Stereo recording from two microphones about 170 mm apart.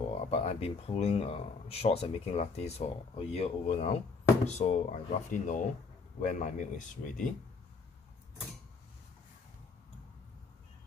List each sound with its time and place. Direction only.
0.2 s speech: 40° left (ahead or behind)